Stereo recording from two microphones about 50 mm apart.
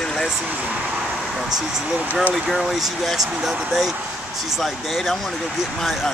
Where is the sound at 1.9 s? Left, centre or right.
Right.